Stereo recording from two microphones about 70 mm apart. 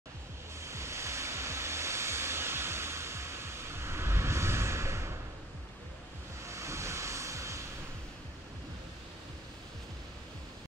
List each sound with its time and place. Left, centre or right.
0.6 s music: right
6.4 s vehicle: right